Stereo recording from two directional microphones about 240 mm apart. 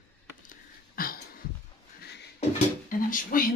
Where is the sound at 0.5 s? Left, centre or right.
Left.